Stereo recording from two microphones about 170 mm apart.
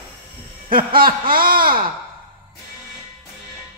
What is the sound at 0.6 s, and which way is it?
Speech, 60° right (ahead or behind).